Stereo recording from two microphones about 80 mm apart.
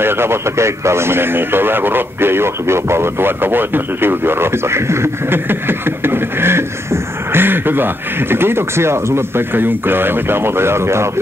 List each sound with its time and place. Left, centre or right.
0.0 s speech: right